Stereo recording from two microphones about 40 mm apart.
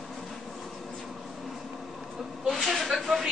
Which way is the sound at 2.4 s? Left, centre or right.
Centre.